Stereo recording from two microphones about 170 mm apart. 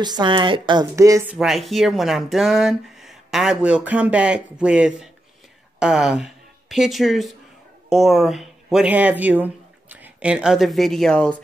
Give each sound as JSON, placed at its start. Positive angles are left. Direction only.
{"t": 0.0, "sound": "a woman's voice", "side_deg": -25}
{"t": 1.3, "sound": "speech", "side_deg": 0}